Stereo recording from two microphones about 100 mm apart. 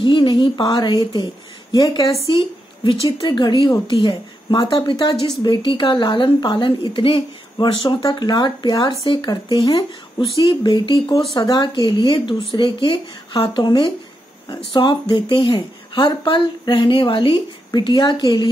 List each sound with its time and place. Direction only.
0.0 s speech: 50° left (ahead or behind)
2.2 s a woman's voice: 55° left (ahead or behind)
7.5 s speech: 45° left (ahead or behind)